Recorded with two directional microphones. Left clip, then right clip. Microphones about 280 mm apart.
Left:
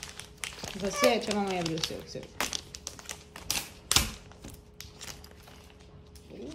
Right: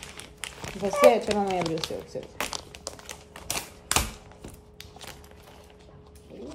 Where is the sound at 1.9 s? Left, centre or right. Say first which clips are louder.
Right 4 dB; centre.